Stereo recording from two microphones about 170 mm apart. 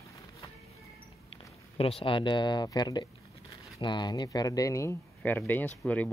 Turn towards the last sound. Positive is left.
turn(degrees=10)  # may be behind; listen again after turning